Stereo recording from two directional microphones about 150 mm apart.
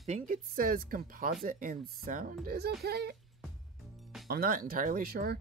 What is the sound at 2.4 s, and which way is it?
Speech, 90° right.